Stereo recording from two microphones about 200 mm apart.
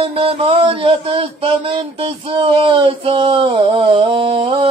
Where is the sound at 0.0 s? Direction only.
30° right (ahead or behind).